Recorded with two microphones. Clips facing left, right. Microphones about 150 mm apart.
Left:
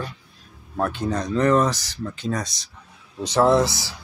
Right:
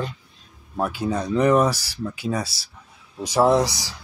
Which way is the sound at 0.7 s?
10° right (ahead or behind).